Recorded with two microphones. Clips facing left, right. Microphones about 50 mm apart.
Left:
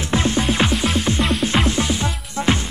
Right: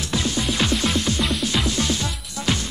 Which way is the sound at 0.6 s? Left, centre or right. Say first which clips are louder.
Left 2 dB; centre.